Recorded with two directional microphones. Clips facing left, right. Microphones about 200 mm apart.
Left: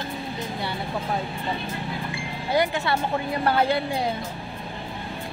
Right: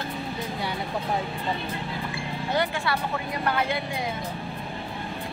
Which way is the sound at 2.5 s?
15° left (ahead or behind).